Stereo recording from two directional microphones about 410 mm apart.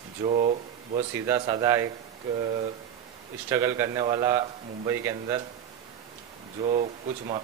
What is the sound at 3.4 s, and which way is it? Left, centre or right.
Speech, centre.